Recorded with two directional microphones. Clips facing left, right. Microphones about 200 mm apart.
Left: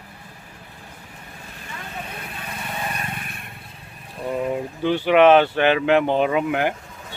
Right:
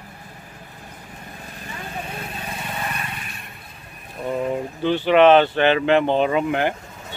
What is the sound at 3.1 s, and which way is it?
Vehicle, 55° left (ahead or behind).